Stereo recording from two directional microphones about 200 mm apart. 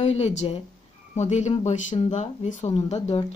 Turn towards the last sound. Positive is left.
turn(degrees=30)  # may be behind; listen again after turning